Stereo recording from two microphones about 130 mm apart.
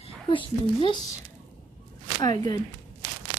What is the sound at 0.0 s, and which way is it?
Speech, 45° left (ahead or behind).